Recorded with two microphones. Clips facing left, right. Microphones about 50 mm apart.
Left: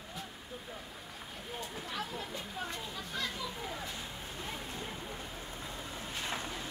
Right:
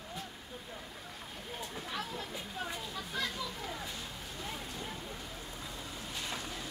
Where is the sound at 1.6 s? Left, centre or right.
Centre.